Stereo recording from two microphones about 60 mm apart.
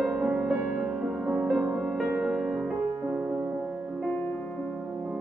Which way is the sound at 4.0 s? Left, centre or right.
Centre.